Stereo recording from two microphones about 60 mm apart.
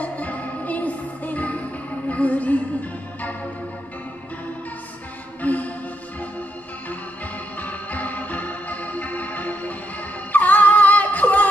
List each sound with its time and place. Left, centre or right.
0.0 s music: left
5.4 s music: left
7.5 s music: left